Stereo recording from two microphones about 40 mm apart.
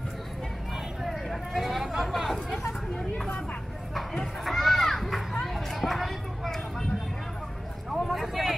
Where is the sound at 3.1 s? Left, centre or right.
Left.